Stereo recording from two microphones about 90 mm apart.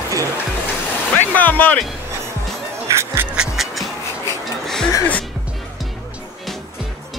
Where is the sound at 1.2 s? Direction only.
20° left (ahead or behind).